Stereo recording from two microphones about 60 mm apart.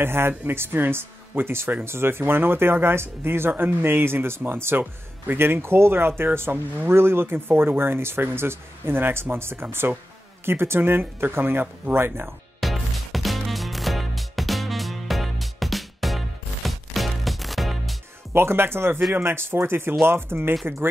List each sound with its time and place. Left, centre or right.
0.0 s speech: right
12.5 s music: centre
18.3 s speech: right